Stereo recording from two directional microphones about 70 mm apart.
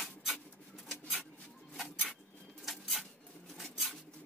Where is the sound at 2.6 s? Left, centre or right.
Centre.